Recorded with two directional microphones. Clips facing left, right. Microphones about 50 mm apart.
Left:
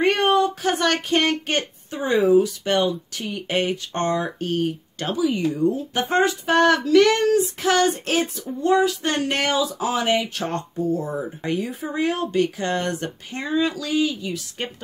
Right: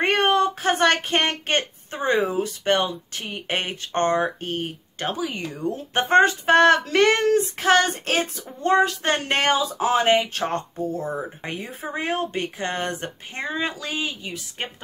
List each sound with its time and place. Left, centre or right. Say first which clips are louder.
0.0 s speech: left 1 dB; right
5.1 s speech: left 7 dB; right
11.1 s speech: left 5 dB; right